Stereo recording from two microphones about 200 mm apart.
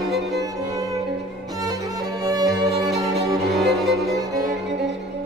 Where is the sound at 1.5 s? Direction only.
20° right (ahead or behind).